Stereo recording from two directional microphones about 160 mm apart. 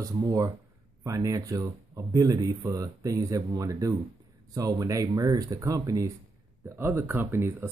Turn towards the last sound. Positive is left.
turn(degrees=-15)  # may be behind; listen again after turning